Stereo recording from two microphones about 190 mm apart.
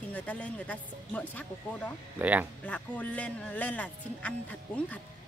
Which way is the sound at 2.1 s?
10° right (ahead or behind).